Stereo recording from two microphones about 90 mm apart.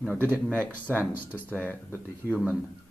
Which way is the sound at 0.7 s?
15° left (ahead or behind).